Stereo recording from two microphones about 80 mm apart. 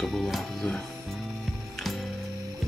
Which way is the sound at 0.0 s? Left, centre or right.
Centre.